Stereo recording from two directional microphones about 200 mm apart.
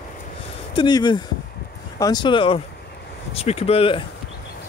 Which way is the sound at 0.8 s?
20° left (ahead or behind).